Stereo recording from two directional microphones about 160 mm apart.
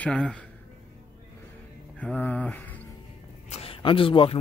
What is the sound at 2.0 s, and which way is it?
Speech, 10° left (ahead or behind).